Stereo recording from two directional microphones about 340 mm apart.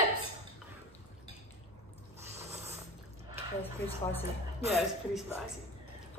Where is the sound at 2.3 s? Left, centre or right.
Centre.